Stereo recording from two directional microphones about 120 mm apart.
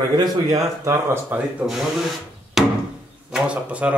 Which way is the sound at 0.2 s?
30° right (ahead or behind).